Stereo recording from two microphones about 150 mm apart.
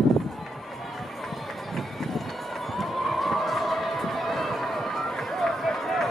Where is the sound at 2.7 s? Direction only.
Centre (ahead or behind).